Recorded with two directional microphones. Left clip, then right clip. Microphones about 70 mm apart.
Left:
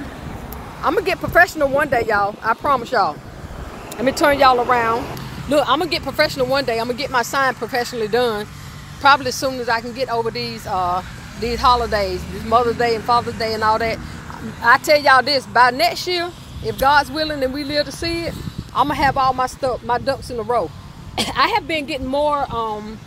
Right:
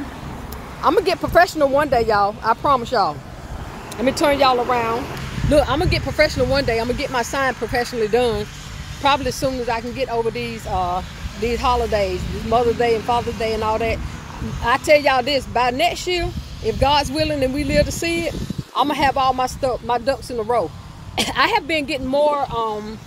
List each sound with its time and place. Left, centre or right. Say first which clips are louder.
0.9 s speech: left 1 dB; right
2.9 s speech: left 1 dB; right
5.5 s speech: even; right
6.2 s speech: even; right
11.5 s speech: left 5 dB; right
11.9 s speech: even; right
12.4 s speech: left 1 dB; right
14.6 s speech: left 2 dB; right
17.1 s speech: right 1 dB; right
18.8 s speech: left 1 dB; right
19.6 s speech: even; right
21.2 s speech: even; right
22.1 s speech: right 1 dB; centre